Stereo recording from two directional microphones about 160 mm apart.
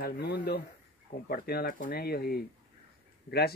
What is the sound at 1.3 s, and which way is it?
Speech, 75° left (ahead or behind).